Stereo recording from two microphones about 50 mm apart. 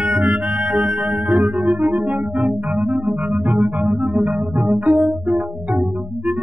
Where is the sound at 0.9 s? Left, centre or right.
Centre.